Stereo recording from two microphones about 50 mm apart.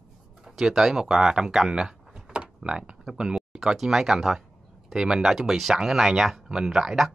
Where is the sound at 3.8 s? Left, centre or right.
Centre.